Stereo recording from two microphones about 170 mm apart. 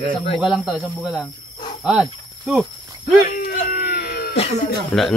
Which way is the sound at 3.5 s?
55° left (ahead or behind).